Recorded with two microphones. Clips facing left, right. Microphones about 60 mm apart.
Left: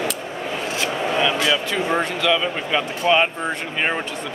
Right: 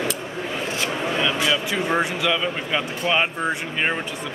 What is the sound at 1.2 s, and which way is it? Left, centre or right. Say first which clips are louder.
Speech: even; centre.